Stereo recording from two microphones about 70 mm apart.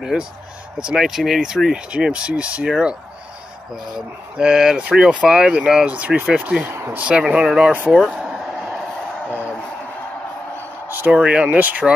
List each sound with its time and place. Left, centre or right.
0.0 s speech: centre
4.4 s speech: centre
6.6 s speech: right
6.9 s speech: centre
8.0 s a sound: centre
11.1 s speech: centre